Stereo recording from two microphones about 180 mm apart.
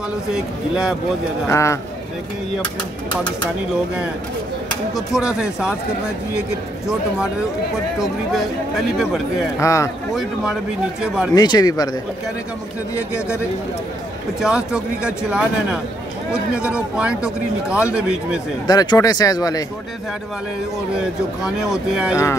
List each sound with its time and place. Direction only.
0.3 s speech: 5° right (ahead or behind)
1.5 s a man's voice: 15° left (ahead or behind)
4.9 s speech: 5° right (ahead or behind)
8.0 s speech: centre (ahead or behind)
9.6 s a man's voice: 15° left (ahead or behind)
10.1 s speech: centre (ahead or behind)
11.3 s speech: 20° left (ahead or behind)
14.4 s speech: 5° right (ahead or behind)
18.7 s speech: 20° left (ahead or behind)
21.4 s speech: 5° right (ahead or behind)